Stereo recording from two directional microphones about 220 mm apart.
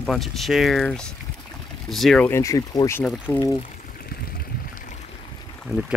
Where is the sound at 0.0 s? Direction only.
Centre (ahead or behind).